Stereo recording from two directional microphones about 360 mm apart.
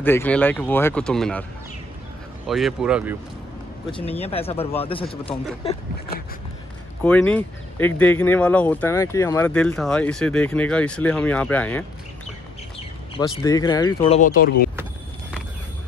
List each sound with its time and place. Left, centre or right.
0.0 s speech: centre
2.4 s speech: centre
3.9 s speech: centre
7.0 s speech: centre
13.1 s speech: centre